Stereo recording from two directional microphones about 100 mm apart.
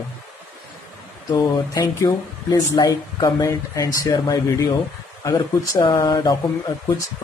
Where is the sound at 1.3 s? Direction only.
40° left (ahead or behind).